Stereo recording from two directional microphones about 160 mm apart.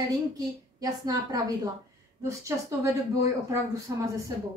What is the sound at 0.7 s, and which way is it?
A woman's voice, 20° right (ahead or behind).